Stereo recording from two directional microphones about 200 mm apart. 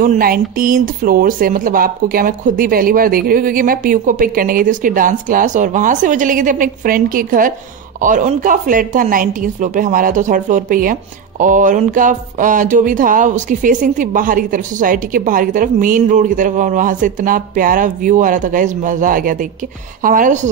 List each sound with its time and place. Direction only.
0.0 s a woman's voice: 45° right (ahead or behind)